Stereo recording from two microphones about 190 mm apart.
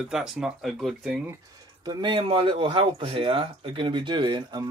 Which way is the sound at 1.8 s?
25° right (ahead or behind).